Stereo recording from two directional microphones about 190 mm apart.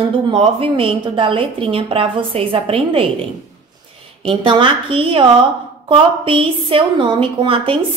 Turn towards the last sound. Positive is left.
turn(degrees=-25)  # may be behind; listen again after turning